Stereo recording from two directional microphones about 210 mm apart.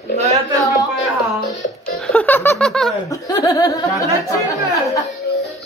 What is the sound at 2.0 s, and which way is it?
Snicker, 5° left (ahead or behind).